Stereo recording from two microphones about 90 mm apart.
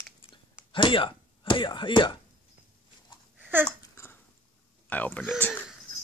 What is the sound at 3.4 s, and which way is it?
Babbling, 20° right (ahead or behind).